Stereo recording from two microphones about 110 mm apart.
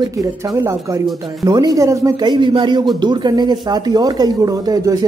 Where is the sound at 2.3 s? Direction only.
45° right (ahead or behind).